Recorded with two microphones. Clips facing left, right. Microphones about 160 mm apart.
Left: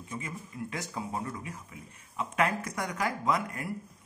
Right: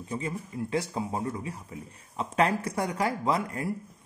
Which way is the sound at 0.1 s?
30° right (ahead or behind).